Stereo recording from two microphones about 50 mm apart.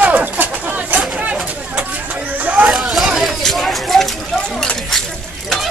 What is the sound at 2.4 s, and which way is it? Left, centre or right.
Hubbub, right.